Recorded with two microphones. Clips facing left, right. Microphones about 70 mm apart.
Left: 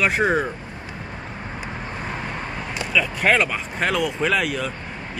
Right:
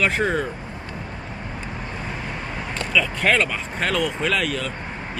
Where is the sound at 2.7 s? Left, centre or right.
Centre.